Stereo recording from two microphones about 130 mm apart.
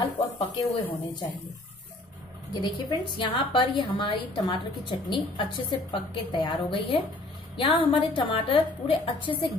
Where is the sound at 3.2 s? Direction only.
40° left (ahead or behind).